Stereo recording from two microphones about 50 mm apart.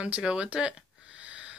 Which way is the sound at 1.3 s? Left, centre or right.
Right.